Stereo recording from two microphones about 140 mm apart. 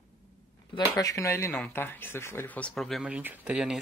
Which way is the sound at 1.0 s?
25° left (ahead or behind).